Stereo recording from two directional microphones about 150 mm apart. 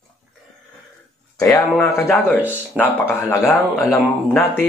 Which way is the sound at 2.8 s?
15° left (ahead or behind).